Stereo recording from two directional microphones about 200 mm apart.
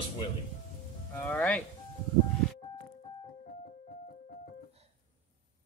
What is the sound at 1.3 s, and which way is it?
Speech, 5° left (ahead or behind).